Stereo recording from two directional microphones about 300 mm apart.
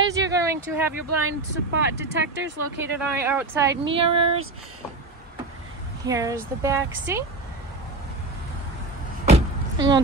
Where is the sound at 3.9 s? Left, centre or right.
Centre.